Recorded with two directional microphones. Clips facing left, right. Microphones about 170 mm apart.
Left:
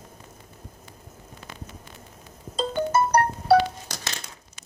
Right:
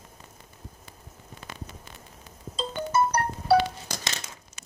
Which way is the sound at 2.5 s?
45° left (ahead or behind).